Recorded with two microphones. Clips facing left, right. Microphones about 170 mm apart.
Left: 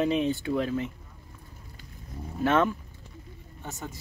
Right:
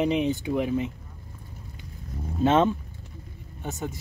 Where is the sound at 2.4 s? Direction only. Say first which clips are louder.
Right 3 dB; 20° right (ahead or behind).